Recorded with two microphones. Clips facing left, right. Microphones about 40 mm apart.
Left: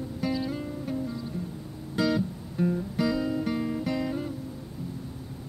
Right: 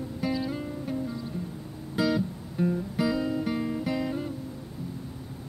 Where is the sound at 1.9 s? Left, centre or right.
Centre.